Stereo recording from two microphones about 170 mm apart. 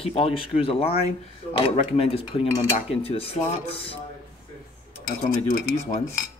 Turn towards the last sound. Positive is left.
turn(degrees=40)  # may be behind; listen again after turning